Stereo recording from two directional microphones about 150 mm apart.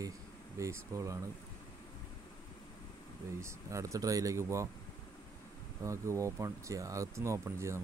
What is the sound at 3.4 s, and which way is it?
Speech, 20° right (ahead or behind).